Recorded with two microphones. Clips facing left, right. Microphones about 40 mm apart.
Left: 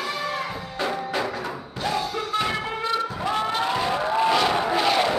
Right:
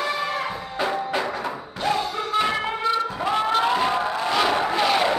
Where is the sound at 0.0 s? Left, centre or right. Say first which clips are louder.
Right 3 dB; right.